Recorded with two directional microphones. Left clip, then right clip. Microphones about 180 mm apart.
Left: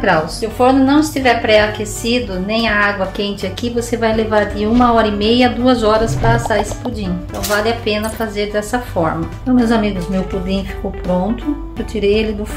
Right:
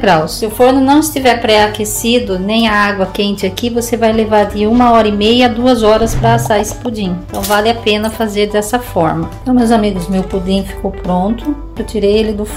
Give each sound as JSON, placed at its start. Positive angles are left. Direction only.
{"t": 0.0, "sound": "a woman's voice", "side_deg": -35}
{"t": 9.6, "sound": "speech", "side_deg": -20}
{"t": 11.9, "sound": "speech", "side_deg": -20}